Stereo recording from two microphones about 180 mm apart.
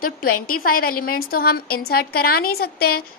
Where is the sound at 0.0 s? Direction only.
55° left (ahead or behind).